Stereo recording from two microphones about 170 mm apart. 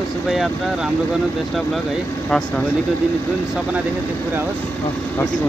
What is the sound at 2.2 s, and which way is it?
Speech, 5° left (ahead or behind).